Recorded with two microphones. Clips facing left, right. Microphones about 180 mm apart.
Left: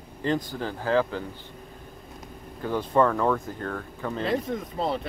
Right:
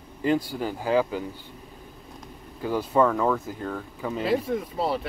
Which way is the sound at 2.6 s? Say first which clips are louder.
Right 1 dB; 5° right (ahead or behind).